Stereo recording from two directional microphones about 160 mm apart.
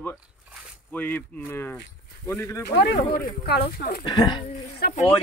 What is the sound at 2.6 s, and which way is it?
Speech, 90° left.